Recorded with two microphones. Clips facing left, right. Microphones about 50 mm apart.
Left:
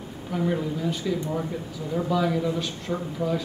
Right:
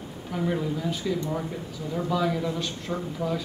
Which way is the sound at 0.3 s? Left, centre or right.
Centre.